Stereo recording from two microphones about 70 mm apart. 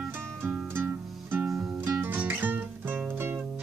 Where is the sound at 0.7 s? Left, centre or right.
Right.